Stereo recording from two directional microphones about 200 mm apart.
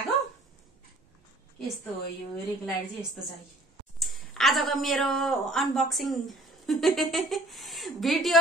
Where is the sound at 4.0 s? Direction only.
Centre (ahead or behind).